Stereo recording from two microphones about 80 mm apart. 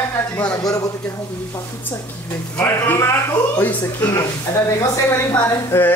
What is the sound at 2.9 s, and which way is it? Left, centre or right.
A woman's voice, left.